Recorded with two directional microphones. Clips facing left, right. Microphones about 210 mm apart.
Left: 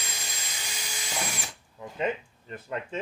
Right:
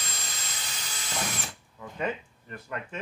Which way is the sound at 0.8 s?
10° left (ahead or behind).